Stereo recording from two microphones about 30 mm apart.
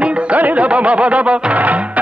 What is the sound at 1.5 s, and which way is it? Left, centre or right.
Music, right.